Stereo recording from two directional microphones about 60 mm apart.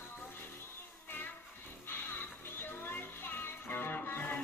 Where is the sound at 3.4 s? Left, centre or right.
Left.